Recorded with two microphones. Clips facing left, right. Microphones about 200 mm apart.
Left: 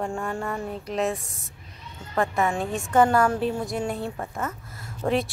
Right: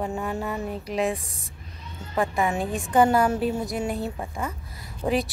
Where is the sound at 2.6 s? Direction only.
Centre (ahead or behind).